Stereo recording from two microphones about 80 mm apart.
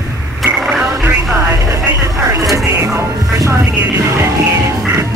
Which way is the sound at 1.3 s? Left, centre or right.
Right.